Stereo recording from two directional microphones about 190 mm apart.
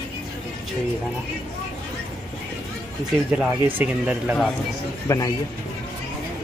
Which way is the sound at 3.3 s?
5° right (ahead or behind).